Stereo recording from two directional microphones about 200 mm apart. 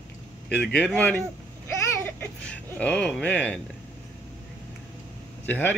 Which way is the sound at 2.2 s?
5° left (ahead or behind).